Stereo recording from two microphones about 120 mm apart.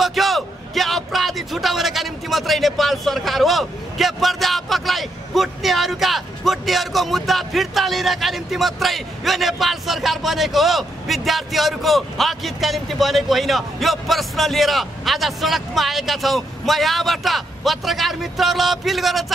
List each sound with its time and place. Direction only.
0.0 s a man's voice: centre (ahead or behind)